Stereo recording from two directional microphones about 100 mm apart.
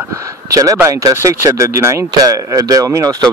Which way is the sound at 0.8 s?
35° right (ahead or behind).